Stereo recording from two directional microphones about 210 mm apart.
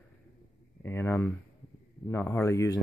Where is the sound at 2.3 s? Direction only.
15° left (ahead or behind).